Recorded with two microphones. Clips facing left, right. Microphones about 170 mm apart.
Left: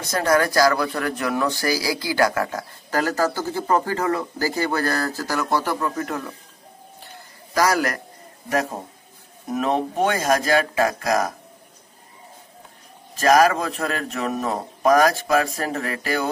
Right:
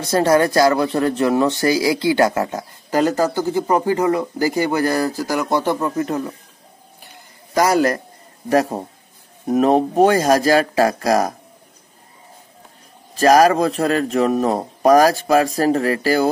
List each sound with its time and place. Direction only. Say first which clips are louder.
0.1 s speech: right 5 dB; 25° right (ahead or behind)
7.2 s a sound: right 3 dB; 25° right (ahead or behind)
9.5 s speech: right 7 dB; 40° right (ahead or behind)
13.1 s speech: right 4 dB; 35° right (ahead or behind)